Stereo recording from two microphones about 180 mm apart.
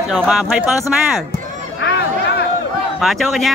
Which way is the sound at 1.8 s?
65° left (ahead or behind).